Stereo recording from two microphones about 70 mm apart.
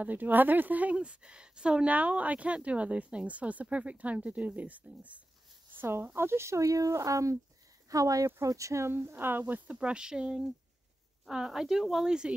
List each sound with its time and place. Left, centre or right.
0.0 s a woman's voice: right
5.8 s speech: right
9.0 s speech: right
9.7 s speech: centre